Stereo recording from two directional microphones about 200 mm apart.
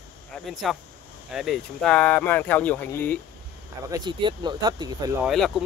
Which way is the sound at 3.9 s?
20° right (ahead or behind).